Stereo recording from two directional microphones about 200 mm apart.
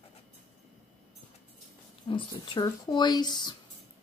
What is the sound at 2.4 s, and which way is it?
Speech, 25° left (ahead or behind).